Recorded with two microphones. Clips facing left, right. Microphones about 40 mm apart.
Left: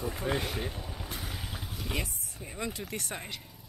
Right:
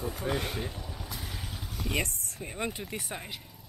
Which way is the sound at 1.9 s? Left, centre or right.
Right.